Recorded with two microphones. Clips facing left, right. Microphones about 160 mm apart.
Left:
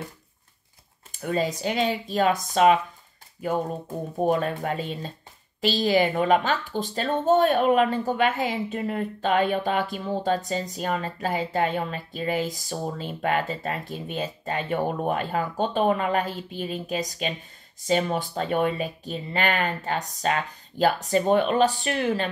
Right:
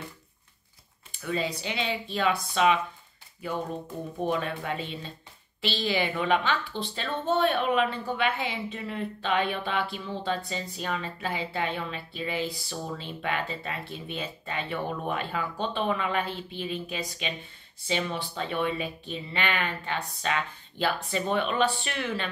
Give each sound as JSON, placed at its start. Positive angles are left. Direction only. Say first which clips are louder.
{"t": 1.1, "sound": "a woman's voice", "louder": "left 5 dB", "side_deg": 45}
{"t": 4.2, "sound": "a woman's voice", "louder": "left 6 dB", "side_deg": 40}